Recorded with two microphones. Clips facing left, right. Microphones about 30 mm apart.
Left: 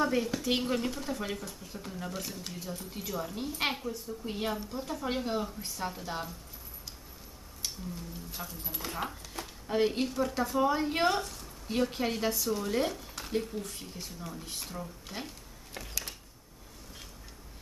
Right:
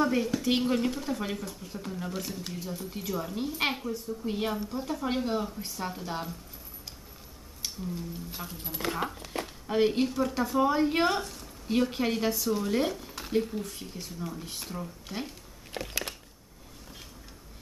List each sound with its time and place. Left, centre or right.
0.0 s speech: centre
7.6 s speech: centre
8.8 s speech: right
9.3 s a sound: right
9.7 s speech: centre
15.7 s a sound: right